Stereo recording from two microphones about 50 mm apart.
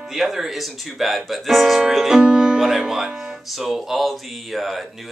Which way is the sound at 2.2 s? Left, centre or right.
Centre.